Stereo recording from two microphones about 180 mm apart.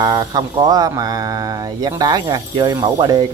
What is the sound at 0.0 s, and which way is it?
Speech, 20° right (ahead or behind).